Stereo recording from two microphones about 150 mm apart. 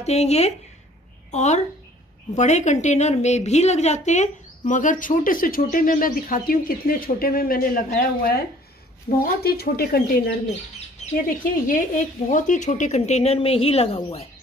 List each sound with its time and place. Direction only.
0.0 s a woman's voice: 45° left (ahead or behind); by 8.4 s 75° left (ahead or behind)
9.4 s speech: 90° left
11.2 s speech: 70° left (ahead or behind); by 14.2 s 40° left (ahead or behind)